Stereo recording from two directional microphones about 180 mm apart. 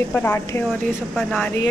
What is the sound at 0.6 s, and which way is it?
Speech, centre (ahead or behind).